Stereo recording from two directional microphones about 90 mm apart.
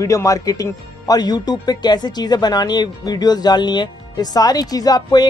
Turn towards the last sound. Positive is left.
turn(degrees=50)  # may be behind; listen again after turning